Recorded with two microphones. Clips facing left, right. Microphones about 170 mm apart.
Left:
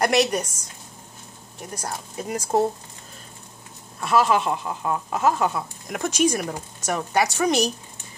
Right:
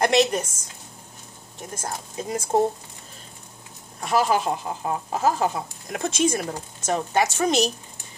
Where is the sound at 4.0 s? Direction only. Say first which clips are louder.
Left 2 dB; 35° right (ahead or behind).